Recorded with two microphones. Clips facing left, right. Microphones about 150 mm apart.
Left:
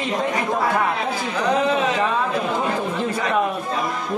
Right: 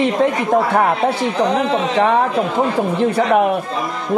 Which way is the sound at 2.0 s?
70° right (ahead or behind).